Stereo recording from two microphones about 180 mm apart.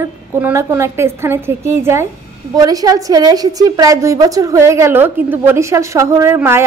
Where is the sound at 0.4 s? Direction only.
15° right (ahead or behind).